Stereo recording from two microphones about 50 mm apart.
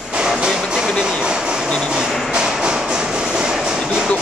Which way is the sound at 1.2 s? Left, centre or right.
Centre.